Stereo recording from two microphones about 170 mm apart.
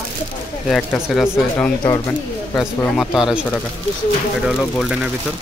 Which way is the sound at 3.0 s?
5° right (ahead or behind).